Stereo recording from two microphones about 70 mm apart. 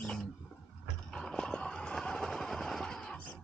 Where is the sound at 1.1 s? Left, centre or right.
Centre.